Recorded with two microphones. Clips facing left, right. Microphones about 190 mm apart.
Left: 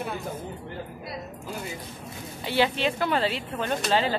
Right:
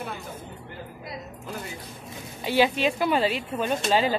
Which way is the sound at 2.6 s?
15° right (ahead or behind).